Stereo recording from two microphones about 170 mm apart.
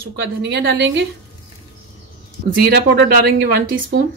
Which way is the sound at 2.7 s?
65° right (ahead or behind).